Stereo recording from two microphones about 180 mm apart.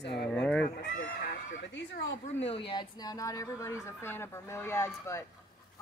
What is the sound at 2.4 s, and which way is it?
Speech, 30° left (ahead or behind).